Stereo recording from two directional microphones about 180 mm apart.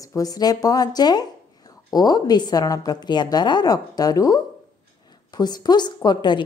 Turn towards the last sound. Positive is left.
turn(degrees=25)  # may be behind; listen again after turning